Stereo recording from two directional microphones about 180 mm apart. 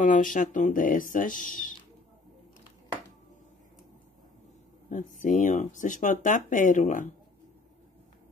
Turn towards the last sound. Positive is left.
turn(degrees=45)  # may be behind; listen again after turning